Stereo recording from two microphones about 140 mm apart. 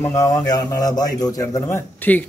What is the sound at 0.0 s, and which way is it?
A man's voice, 20° left (ahead or behind).